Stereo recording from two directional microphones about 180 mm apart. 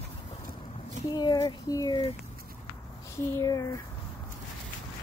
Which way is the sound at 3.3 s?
20° left (ahead or behind).